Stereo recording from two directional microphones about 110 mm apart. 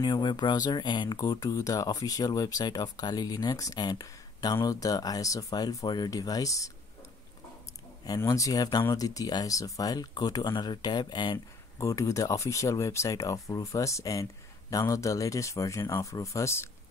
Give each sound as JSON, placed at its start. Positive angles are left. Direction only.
{"t": 0.0, "sound": "speech", "side_deg": 45}
{"t": 8.2, "sound": "speech", "side_deg": 30}
{"t": 11.8, "sound": "speech", "side_deg": 30}